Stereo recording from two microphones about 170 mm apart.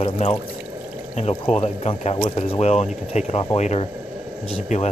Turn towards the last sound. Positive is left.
turn(degrees=40)  # may be behind; listen again after turning